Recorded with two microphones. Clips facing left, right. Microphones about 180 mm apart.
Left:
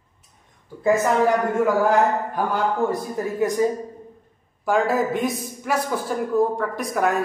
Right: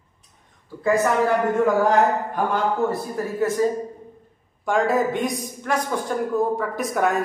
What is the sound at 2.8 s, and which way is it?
Speech, 15° left (ahead or behind).